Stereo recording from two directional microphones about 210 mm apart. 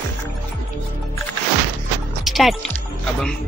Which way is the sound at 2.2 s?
Centre (ahead or behind).